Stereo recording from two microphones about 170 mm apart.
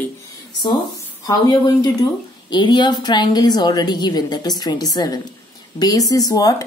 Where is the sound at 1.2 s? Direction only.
25° left (ahead or behind).